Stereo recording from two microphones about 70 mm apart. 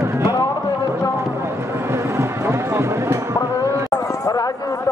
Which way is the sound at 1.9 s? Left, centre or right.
Right.